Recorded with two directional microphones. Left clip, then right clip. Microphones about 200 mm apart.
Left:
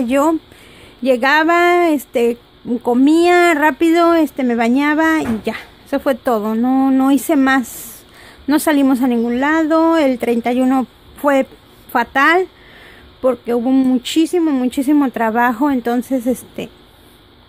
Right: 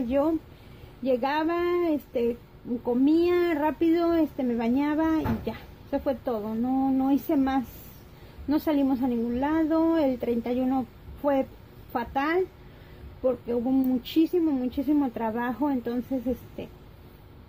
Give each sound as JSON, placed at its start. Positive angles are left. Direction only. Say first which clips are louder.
{"t": 1.0, "sound": "speech", "louder": "left 13 dB", "side_deg": 50}